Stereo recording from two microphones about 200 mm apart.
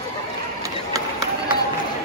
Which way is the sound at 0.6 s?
15° right (ahead or behind).